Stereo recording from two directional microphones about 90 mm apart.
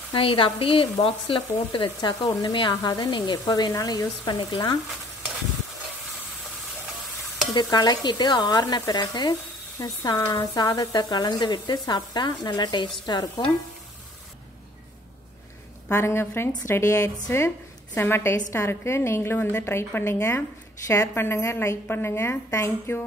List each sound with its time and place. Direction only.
0.1 s frying: 75° left (ahead or behind)
2.0 s speech: 50° left (ahead or behind)
2.7 s speech: 45° left (ahead or behind)
7.5 s speech: 50° left (ahead or behind)
13.0 s speech: 45° left (ahead or behind)
15.9 s a woman's voice: 30° left (ahead or behind)